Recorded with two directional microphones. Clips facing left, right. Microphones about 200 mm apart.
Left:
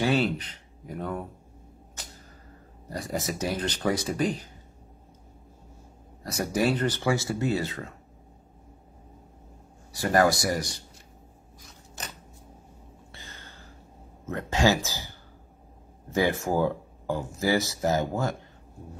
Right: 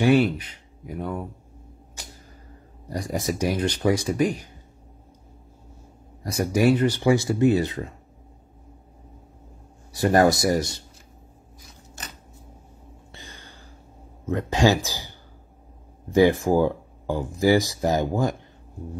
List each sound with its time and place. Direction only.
0.0 s speech: 15° right (ahead or behind)
2.9 s speech: 15° right (ahead or behind)
6.2 s speech: 15° right (ahead or behind)
9.9 s speech: 25° right (ahead or behind)
13.1 s a sound: 15° right (ahead or behind)
14.2 s speech: 15° right (ahead or behind)